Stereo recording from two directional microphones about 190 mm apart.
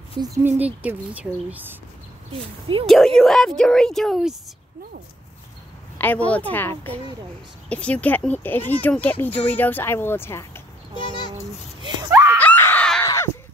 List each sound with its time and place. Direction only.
0.2 s speech: 15° right (ahead or behind)
2.7 s a woman's voice: 25° right (ahead or behind)
3.2 s speech: centre (ahead or behind)
5.9 s speech: 10° left (ahead or behind)
11.0 s a sound: 25° left (ahead or behind)
11.8 s screaming: 15° right (ahead or behind)
12.4 s screaming: 10° left (ahead or behind)
13.0 s a sound: 15° left (ahead or behind)